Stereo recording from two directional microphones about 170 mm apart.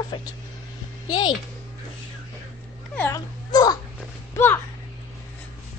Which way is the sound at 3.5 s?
25° left (ahead or behind).